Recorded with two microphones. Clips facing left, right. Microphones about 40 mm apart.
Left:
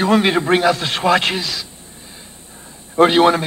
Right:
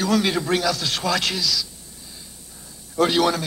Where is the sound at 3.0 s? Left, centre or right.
Left.